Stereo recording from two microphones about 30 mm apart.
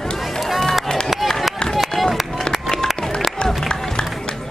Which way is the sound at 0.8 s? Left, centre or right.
Centre.